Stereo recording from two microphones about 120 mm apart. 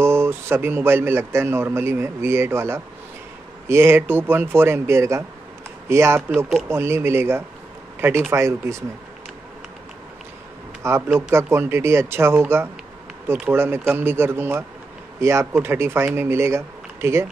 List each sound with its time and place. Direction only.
0.0 s speech: 20° right (ahead or behind)
10.8 s speech: 20° right (ahead or behind)